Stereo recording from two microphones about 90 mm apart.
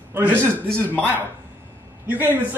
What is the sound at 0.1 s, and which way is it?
Speech, 20° right (ahead or behind).